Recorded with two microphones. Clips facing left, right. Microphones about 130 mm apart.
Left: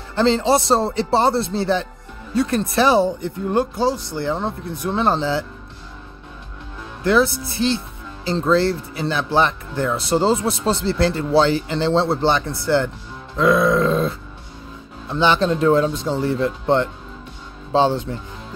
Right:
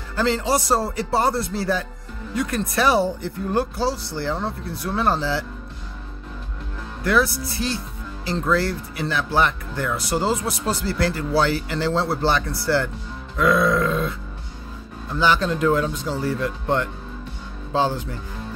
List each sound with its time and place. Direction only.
0.1 s speech: 25° left (ahead or behind)
7.0 s speech: 25° left (ahead or behind)